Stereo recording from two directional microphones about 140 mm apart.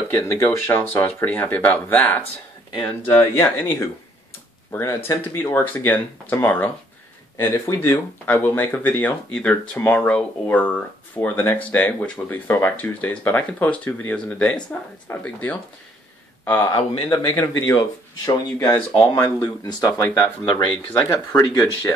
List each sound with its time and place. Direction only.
0.1 s speech: 20° left (ahead or behind)
16.7 s a man's voice: 35° left (ahead or behind)
17.4 s speech: 20° left (ahead or behind)